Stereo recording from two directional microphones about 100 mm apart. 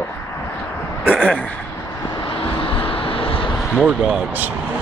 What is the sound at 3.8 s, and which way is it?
Speech, 10° right (ahead or behind).